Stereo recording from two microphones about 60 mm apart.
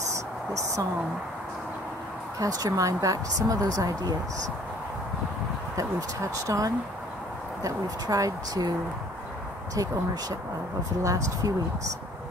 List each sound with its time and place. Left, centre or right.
0.5 s speech: right
2.3 s a woman's voice: right
5.8 s speech: right
11.0 s speech: right